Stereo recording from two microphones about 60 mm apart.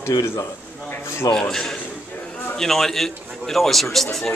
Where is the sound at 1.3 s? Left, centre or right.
Centre.